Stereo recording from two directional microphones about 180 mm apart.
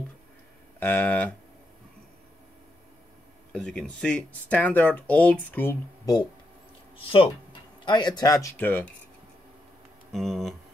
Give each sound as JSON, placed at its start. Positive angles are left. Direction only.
{"t": 0.7, "sound": "speech", "side_deg": 10}
{"t": 3.5, "sound": "speech", "side_deg": 5}
{"t": 7.8, "sound": "speech", "side_deg": 25}
{"t": 10.1, "sound": "speech", "side_deg": 0}